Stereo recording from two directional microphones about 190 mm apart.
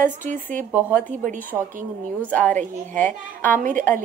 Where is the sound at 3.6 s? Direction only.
45° right (ahead or behind).